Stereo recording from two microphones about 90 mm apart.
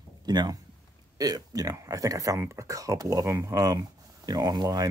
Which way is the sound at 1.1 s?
45° right (ahead or behind).